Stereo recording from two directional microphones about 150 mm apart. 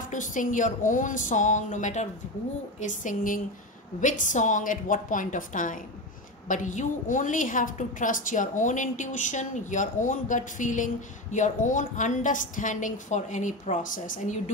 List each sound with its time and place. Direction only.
0.0 s a woman's voice: 60° left (ahead or behind)